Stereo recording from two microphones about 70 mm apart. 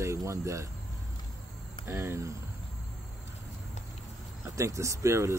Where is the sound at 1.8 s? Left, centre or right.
Right.